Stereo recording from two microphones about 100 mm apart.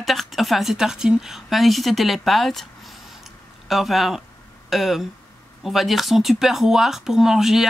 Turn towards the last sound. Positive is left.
turn(degrees=-5)  # may be behind; listen again after turning